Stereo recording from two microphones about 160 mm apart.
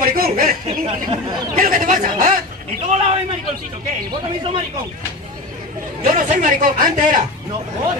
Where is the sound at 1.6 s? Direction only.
60° right (ahead or behind).